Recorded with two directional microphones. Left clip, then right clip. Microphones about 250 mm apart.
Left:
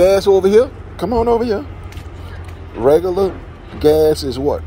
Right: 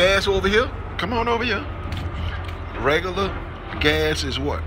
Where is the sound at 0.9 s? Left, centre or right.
Left.